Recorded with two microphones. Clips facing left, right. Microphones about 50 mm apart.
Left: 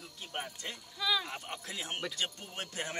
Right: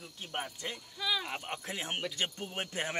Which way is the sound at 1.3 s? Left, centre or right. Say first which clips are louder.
Right 3 dB; right.